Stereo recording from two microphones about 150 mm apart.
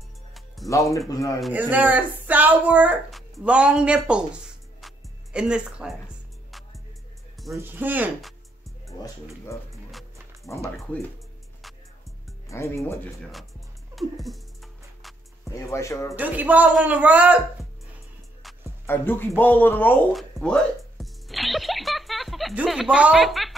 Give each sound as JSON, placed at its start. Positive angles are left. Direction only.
{"t": 0.7, "sound": "speech", "side_deg": 20}
{"t": 1.5, "sound": "speech", "side_deg": -10}
{"t": 7.5, "sound": "speech", "side_deg": -15}
{"t": 8.8, "sound": "speech", "side_deg": 20}
{"t": 12.4, "sound": "speech", "side_deg": 20}
{"t": 13.9, "sound": "music", "side_deg": 0}
{"t": 15.5, "sound": "speech", "side_deg": 20}
{"t": 16.2, "sound": "speech", "side_deg": -10}
{"t": 18.9, "sound": "speech", "side_deg": 15}
{"t": 20.1, "sound": "music", "side_deg": 0}
{"t": 22.5, "sound": "speech", "side_deg": -5}